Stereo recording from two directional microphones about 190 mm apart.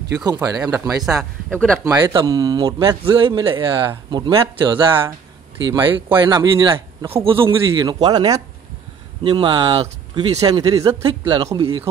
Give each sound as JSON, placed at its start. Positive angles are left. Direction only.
{"t": 0.4, "sound": "speech", "side_deg": -10}
{"t": 1.0, "sound": "speech", "side_deg": 0}
{"t": 1.9, "sound": "speech", "side_deg": -20}
{"t": 6.0, "sound": "speech", "side_deg": -10}
{"t": 6.3, "sound": "speech", "side_deg": -25}